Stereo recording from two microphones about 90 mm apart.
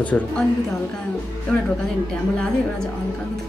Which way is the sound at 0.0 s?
15° left (ahead or behind).